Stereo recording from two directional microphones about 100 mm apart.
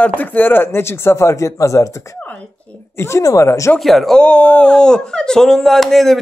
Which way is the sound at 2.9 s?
25° left (ahead or behind).